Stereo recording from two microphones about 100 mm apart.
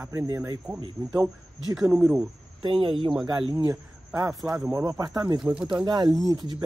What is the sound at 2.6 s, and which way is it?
Speech, 55° right (ahead or behind).